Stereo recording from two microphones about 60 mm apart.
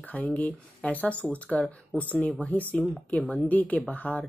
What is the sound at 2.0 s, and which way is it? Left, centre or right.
Speech, left.